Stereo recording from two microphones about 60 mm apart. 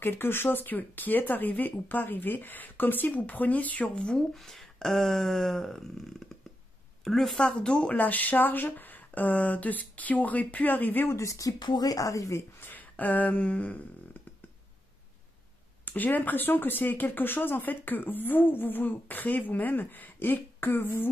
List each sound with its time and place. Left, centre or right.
0.0 s speech: left; by 4.2 s centre
4.3 s a sound: centre
7.3 s speech: centre
7.9 s speech: left
11.1 s speech: left
12.5 s a sound: left
15.8 s speech: left